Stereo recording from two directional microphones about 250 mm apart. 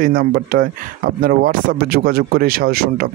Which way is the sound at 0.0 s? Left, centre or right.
Right.